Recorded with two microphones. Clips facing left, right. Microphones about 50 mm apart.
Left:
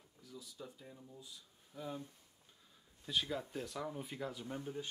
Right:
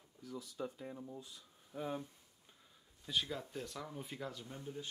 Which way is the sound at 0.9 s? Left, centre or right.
Right.